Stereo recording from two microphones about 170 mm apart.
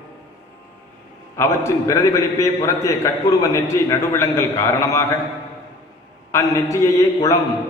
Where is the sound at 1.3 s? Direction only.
15° left (ahead or behind).